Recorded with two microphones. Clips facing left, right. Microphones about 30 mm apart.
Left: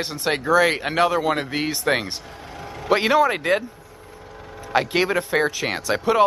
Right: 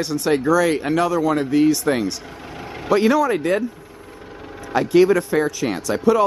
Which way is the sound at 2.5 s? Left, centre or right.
Centre.